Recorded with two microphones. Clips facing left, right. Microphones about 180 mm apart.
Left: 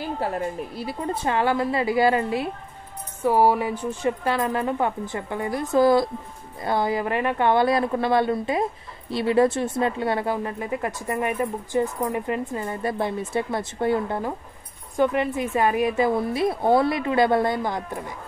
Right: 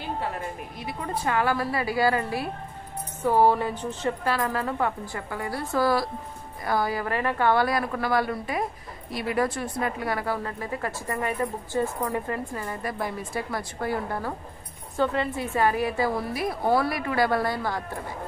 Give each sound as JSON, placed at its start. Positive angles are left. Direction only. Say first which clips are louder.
{"t": 0.7, "sound": "speech", "louder": "left 4 dB", "side_deg": 30}
{"t": 3.2, "sound": "speech", "louder": "left 2 dB", "side_deg": 10}